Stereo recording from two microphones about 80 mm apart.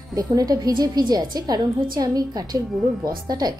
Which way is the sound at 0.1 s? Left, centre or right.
Right.